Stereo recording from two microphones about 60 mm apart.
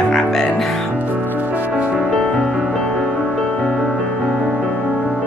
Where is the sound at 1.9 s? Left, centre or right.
Centre.